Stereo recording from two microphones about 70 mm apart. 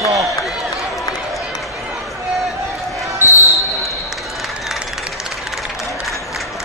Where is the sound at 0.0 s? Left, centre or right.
Right.